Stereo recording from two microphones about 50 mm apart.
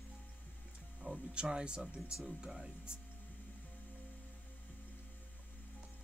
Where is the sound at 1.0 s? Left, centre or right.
Centre.